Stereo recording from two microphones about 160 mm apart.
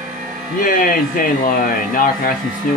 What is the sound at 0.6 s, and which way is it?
Speech, 60° left (ahead or behind).